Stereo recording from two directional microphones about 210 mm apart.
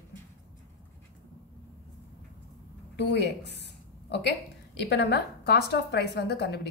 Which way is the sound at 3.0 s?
55° left (ahead or behind).